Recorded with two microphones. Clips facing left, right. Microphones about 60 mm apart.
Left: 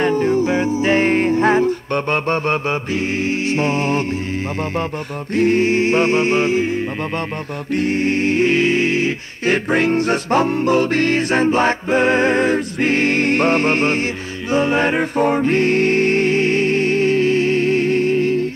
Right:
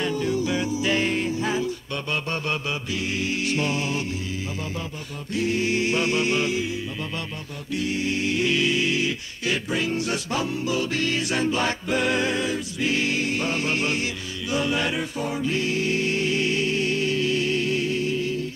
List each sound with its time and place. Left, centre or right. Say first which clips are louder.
0.0 s music: left 9 dB; left
5.3 s music: left 9 dB; left
7.7 s a capella: left 8 dB; left
14.5 s music: left 8 dB; left